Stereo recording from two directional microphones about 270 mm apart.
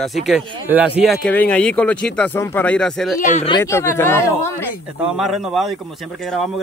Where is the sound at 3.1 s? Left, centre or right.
Left; by 4.6 s centre.